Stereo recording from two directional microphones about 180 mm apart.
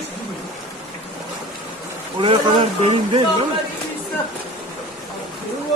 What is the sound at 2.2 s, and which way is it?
Speech, 30° right (ahead or behind).